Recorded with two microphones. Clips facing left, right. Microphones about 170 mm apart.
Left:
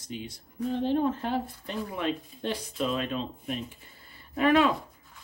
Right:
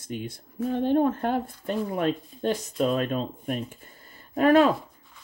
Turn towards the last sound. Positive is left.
turn(degrees=-40)  # may be behind; listen again after turning